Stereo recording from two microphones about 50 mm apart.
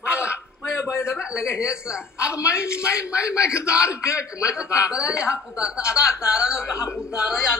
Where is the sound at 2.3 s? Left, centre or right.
Left.